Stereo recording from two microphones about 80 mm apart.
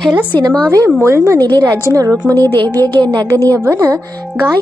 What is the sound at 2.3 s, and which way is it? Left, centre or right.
Speech, left.